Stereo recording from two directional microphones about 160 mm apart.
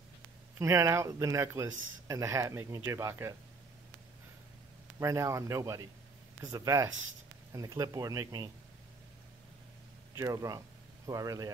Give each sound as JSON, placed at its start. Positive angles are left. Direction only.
{"t": 0.6, "sound": "speech", "side_deg": -20}
{"t": 4.9, "sound": "speech", "side_deg": -20}
{"t": 10.1, "sound": "speech", "side_deg": -20}